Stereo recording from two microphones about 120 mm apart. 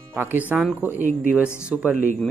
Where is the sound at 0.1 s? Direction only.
15° right (ahead or behind).